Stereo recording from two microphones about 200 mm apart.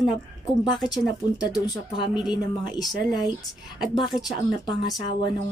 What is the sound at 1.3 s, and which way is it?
Speech, 20° left (ahead or behind).